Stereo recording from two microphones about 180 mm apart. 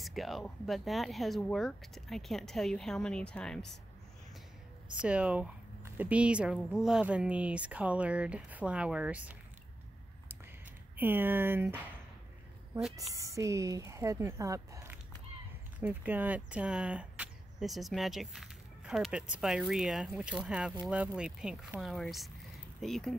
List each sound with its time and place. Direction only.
0.0 s speech: centre (ahead or behind)
5.0 s speech: 5° right (ahead or behind)
11.0 s speech: 10° right (ahead or behind)